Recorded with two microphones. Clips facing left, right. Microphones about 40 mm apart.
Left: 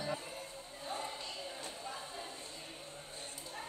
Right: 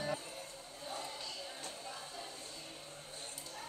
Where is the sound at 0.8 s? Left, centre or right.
Left.